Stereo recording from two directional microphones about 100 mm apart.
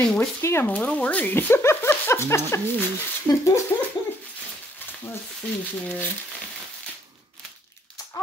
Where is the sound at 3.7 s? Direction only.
25° left (ahead or behind).